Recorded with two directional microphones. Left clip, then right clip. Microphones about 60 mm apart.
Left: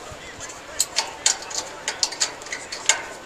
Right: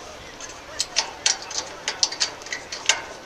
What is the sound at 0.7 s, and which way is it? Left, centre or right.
Tick-tock, right.